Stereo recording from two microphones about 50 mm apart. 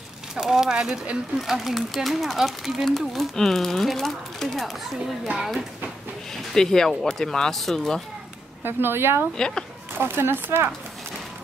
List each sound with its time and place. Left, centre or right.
0.4 s speech: centre
5.3 s speech: right
6.3 s speech: centre
8.6 s speech: right
9.4 s speech: centre
9.9 s speech: right